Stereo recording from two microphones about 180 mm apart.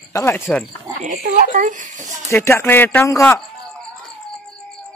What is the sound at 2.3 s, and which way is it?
Speech, 15° left (ahead or behind).